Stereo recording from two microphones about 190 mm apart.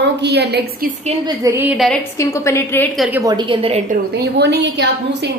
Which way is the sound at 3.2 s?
25° right (ahead or behind).